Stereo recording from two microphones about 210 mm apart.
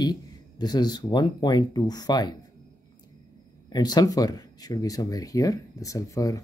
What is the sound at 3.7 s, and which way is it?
Speech, 20° left (ahead or behind).